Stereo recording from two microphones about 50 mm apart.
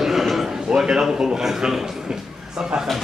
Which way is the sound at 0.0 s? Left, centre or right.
Centre.